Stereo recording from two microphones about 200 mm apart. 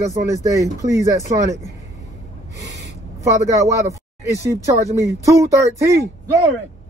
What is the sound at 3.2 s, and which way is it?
Speech, 15° right (ahead or behind).